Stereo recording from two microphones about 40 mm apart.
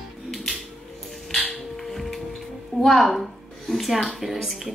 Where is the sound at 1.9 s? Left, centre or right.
Centre.